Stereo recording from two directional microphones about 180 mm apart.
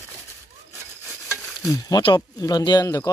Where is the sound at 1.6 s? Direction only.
20° left (ahead or behind).